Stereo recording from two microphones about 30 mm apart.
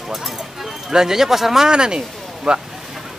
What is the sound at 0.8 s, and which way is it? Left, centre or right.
Speech, centre.